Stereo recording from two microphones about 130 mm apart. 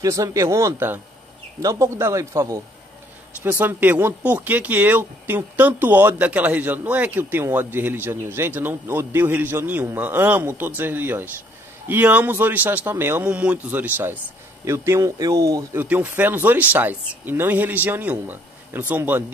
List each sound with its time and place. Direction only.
0.0 s speech: 25° right (ahead or behind)
15.7 s speech: 15° right (ahead or behind)